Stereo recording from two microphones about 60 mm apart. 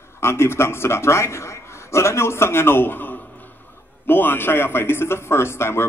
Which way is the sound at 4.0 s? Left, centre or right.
Left.